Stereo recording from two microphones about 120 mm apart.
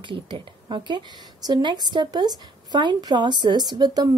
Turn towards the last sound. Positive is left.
turn(degrees=-35)  # may be behind; listen again after turning